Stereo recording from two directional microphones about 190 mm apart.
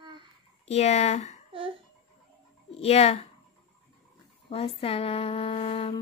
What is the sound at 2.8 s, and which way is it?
Speech, 35° left (ahead or behind).